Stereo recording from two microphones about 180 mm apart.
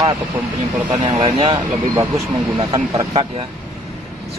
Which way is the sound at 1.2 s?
25° right (ahead or behind).